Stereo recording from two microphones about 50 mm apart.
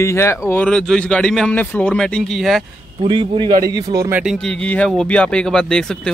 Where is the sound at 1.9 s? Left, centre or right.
Centre.